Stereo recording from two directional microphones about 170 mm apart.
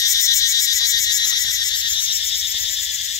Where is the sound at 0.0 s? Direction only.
20° left (ahead or behind).